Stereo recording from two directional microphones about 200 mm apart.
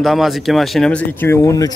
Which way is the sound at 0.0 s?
Centre (ahead or behind).